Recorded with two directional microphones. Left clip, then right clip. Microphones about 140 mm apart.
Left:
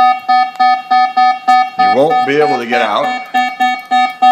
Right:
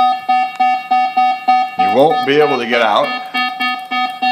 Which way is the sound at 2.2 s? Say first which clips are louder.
Left 1 dB; centre (ahead or behind).